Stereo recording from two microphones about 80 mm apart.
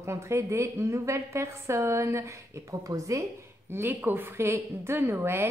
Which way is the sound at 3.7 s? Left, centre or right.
Right.